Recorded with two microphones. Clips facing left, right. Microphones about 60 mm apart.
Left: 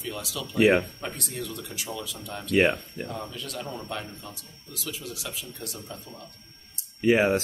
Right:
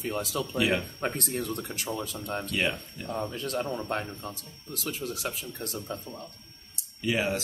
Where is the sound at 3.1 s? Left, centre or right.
Right.